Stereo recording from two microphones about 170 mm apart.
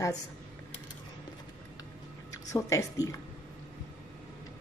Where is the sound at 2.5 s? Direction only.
20° left (ahead or behind).